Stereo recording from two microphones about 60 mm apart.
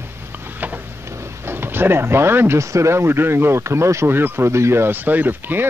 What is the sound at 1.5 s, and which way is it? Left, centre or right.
Speech, right.